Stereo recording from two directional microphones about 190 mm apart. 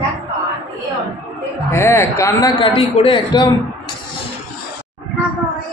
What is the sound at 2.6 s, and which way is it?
A woman's voice, 25° left (ahead or behind).